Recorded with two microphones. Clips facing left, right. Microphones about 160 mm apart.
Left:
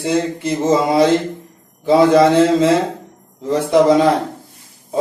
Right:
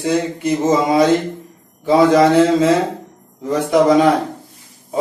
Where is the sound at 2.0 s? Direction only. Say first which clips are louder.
Even; 25° left (ahead or behind).